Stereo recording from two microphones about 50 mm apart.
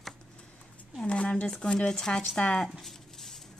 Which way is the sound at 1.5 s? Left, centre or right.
Centre.